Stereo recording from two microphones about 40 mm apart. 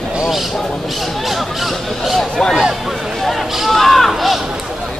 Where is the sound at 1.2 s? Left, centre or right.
Centre.